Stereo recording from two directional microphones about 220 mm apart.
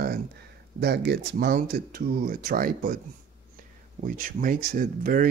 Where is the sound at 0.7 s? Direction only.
50° right (ahead or behind).